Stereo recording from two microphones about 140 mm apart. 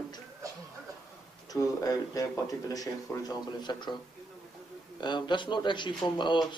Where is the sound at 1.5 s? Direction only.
25° left (ahead or behind).